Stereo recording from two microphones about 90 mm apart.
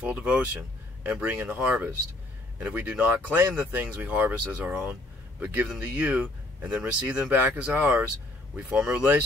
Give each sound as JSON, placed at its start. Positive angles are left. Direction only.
{"t": 0.0, "sound": "speech", "side_deg": -15}